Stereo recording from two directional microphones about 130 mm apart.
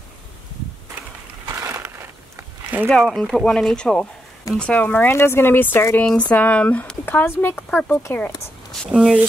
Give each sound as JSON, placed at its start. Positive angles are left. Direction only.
{"t": 1.4, "sound": "a sound", "side_deg": -20}
{"t": 2.9, "sound": "speech", "side_deg": 5}
{"t": 8.9, "sound": "speech", "side_deg": 0}